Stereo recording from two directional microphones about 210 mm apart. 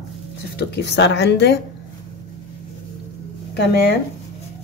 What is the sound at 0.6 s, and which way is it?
A woman's voice, 50° left (ahead or behind).